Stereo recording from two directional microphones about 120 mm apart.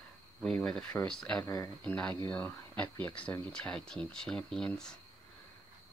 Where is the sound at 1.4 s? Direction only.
30° left (ahead or behind).